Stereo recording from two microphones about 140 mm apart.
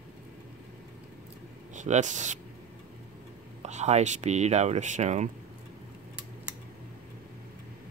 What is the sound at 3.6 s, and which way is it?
Speech, 55° right (ahead or behind).